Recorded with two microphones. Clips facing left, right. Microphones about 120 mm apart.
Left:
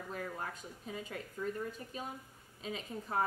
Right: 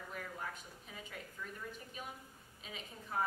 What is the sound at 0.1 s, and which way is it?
A woman's voice, 40° left (ahead or behind).